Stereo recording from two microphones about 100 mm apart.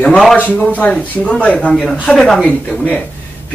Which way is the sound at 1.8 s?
Centre (ahead or behind).